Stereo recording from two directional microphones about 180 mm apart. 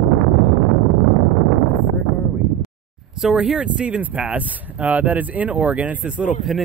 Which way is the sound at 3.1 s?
5° right (ahead or behind).